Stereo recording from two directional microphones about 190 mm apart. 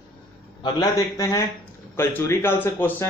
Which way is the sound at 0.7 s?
15° left (ahead or behind).